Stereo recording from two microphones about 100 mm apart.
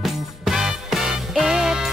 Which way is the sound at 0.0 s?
5° right (ahead or behind).